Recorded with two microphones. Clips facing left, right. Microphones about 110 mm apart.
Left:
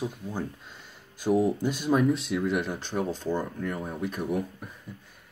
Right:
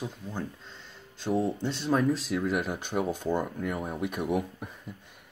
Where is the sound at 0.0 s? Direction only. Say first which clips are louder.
Left 3 dB; 15° left (ahead or behind).